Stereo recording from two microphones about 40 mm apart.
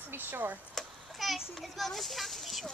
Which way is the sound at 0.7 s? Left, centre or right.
Centre.